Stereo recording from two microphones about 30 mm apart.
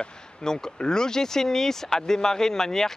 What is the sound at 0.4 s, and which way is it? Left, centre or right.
Speech, left.